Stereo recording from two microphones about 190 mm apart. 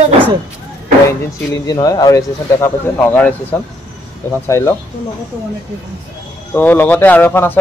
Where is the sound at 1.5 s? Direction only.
20° left (ahead or behind).